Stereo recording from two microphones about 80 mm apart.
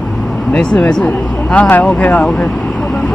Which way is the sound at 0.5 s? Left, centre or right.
Centre.